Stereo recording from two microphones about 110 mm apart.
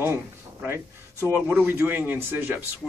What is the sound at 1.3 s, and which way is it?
Speech, 15° right (ahead or behind).